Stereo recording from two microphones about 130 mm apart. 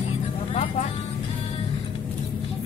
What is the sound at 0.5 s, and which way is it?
Vehicle, 50° left (ahead or behind).